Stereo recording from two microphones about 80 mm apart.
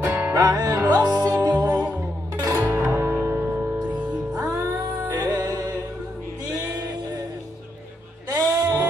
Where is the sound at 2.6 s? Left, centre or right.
Right.